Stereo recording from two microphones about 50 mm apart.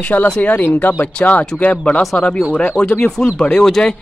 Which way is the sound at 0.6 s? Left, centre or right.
Left.